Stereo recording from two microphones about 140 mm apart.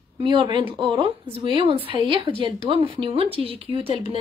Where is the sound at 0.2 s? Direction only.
35° right (ahead or behind).